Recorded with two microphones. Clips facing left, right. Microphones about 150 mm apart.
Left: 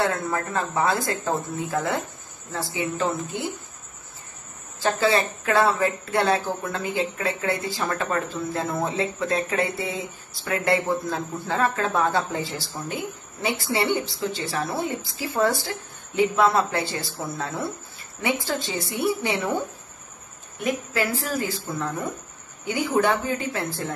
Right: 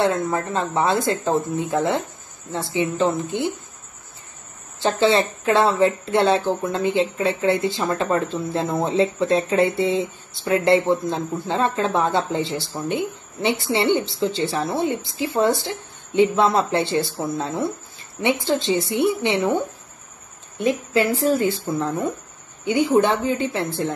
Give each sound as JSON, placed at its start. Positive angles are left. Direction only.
{"t": 0.0, "sound": "speech", "side_deg": -25}
{"t": 4.7, "sound": "speech", "side_deg": -25}
{"t": 20.5, "sound": "speech", "side_deg": -25}